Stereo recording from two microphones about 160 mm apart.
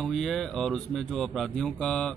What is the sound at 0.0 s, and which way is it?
Speech, centre (ahead or behind).